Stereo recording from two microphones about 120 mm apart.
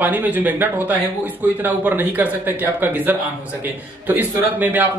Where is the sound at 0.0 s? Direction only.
15° right (ahead or behind).